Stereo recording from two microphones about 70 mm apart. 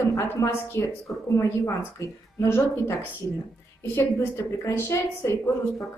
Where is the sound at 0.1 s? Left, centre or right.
Left.